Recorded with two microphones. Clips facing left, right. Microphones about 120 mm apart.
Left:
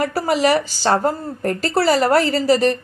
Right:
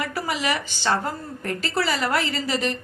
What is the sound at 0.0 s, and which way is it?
A woman's voice, 40° left (ahead or behind).